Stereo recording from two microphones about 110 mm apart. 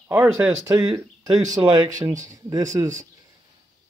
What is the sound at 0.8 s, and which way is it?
Speech, 40° right (ahead or behind).